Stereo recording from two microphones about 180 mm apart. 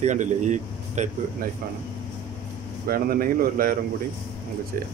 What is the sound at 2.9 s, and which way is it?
Speech, 55° right (ahead or behind).